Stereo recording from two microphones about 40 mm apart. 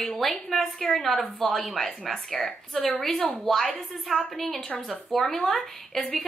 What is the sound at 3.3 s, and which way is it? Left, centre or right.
A woman's voice, centre.